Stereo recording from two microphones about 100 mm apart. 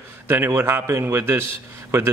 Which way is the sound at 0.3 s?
20° right (ahead or behind).